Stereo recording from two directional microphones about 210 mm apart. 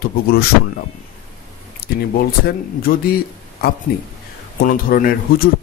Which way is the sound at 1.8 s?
45° left (ahead or behind).